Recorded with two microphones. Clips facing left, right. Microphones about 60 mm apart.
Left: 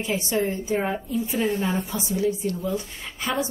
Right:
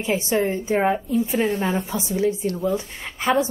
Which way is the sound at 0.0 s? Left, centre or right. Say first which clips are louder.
Right 3 dB; right.